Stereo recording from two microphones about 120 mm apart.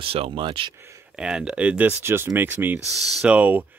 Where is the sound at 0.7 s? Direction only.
25° right (ahead or behind).